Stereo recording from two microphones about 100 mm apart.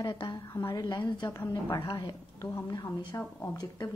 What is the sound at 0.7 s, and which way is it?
Speech, 45° left (ahead or behind).